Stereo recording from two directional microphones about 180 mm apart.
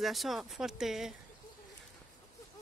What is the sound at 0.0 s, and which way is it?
Speech, centre (ahead or behind).